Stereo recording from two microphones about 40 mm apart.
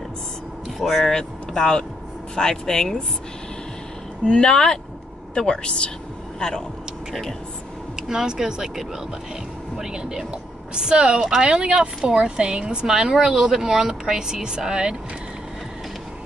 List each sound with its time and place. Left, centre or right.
1.0 s speech: centre
4.3 s a woman's voice: centre
7.9 s a woman's voice: centre
12.8 s speech: centre